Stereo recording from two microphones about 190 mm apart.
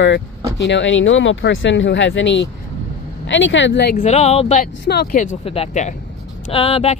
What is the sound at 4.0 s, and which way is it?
Speech, 35° left (ahead or behind).